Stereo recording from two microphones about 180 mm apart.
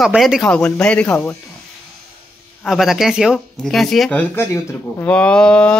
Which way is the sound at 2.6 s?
Centre (ahead or behind).